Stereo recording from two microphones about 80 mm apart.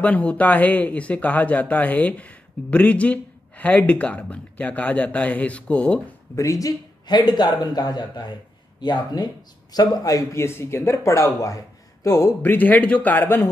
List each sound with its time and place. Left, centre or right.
0.0 s speech: centre
6.3 s speech: left
7.1 s speech: left
10.4 s speech: left
12.4 s a man's voice: left